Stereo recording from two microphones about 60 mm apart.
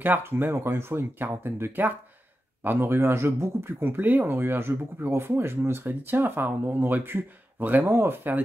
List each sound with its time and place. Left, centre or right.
0.0 s speech: right
3.8 s speech: right